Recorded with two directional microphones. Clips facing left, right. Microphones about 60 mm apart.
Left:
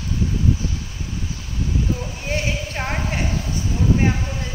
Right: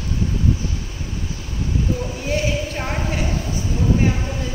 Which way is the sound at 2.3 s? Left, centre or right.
Left.